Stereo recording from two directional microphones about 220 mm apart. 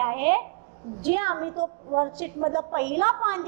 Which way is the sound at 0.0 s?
15° right (ahead or behind).